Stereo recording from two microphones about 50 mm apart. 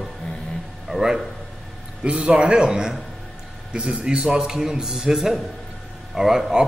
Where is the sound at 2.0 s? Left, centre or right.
Right.